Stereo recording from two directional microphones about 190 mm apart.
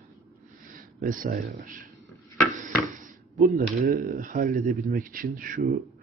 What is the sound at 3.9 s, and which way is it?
Speech, 45° right (ahead or behind).